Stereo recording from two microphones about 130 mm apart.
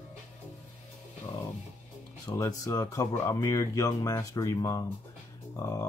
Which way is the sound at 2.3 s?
30° left (ahead or behind).